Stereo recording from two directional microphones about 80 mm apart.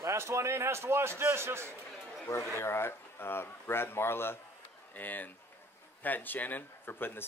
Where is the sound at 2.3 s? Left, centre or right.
Left.